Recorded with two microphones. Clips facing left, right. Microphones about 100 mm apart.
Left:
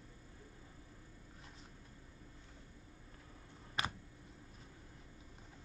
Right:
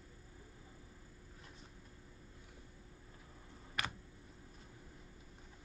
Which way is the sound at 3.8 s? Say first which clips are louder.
Left 2 dB; 25° left (ahead or behind).